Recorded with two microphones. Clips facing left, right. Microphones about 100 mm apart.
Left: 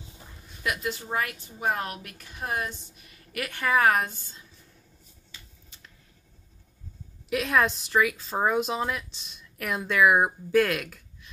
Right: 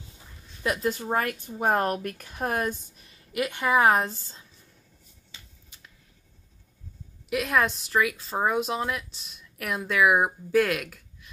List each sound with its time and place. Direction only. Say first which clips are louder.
0.7 s a woman's voice: right 4 dB; 45° right (ahead or behind)
3.0 s speech: right 4 dB; 25° right (ahead or behind)
7.2 s speech: even; 5° right (ahead or behind)